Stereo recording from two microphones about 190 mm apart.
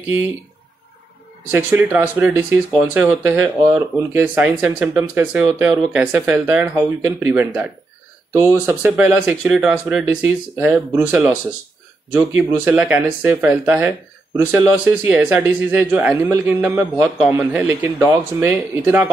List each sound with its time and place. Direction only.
1.5 s speech: 10° right (ahead or behind)